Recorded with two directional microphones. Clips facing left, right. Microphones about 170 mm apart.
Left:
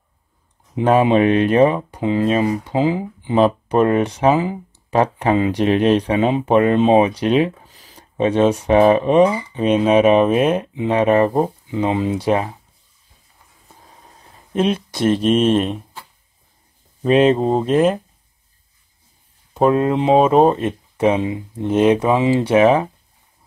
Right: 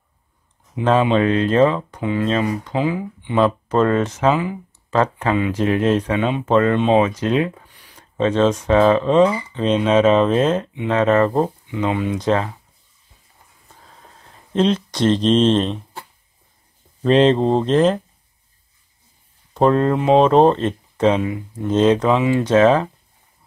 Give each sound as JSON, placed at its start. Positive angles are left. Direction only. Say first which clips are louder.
{"t": 1.0, "sound": "speech", "louder": "left 3 dB", "side_deg": 25}
{"t": 2.0, "sound": "speech", "louder": "left 4 dB", "side_deg": 30}
{"t": 3.3, "sound": "speech", "louder": "left 2 dB", "side_deg": 15}
{"t": 4.4, "sound": "speech", "louder": "left 3 dB", "side_deg": 30}
{"t": 4.9, "sound": "speech", "louder": "left 2 dB", "side_deg": 15}
{"t": 6.4, "sound": "speech", "louder": "left 1 dB", "side_deg": 15}
{"t": 11.6, "sound": "speech", "louder": "left 2 dB", "side_deg": 30}
{"t": 12.2, "sound": "speech", "louder": "left 1 dB", "side_deg": 15}
{"t": 14.5, "sound": "speech", "louder": "right 1 dB", "side_deg": 10}
{"t": 17.0, "sound": "speech", "louder": "even", "side_deg": 10}
{"t": 19.5, "sound": "speech", "louder": "even", "side_deg": 10}